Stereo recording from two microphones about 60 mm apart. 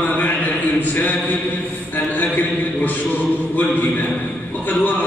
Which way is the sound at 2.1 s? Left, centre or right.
Left.